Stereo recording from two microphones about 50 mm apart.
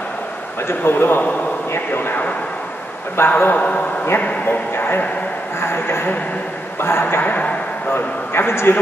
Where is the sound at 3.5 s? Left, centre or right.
Left.